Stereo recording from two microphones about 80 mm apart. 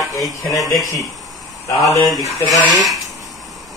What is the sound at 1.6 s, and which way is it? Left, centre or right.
Speech, left.